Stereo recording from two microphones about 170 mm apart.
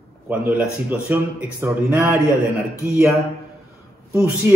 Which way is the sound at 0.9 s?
10° right (ahead or behind).